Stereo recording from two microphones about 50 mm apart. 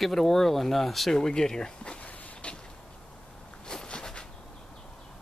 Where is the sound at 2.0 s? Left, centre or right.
Centre.